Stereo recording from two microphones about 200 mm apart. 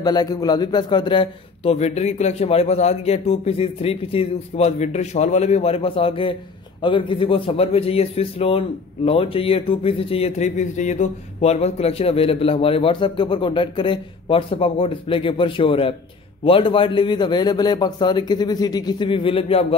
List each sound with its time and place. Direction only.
0.0 s a man's voice: 20° left (ahead or behind)